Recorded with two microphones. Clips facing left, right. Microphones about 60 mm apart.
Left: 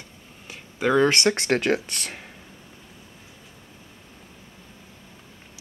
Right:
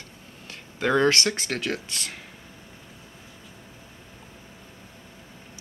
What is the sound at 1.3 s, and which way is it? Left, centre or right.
Speech, left.